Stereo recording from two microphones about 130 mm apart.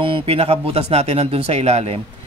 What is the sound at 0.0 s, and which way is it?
Speech, 45° right (ahead or behind).